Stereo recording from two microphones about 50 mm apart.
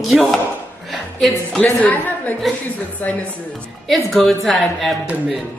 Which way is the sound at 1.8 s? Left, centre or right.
Left.